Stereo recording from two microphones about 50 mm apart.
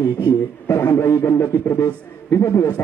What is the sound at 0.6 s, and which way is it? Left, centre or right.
A man's voice, left.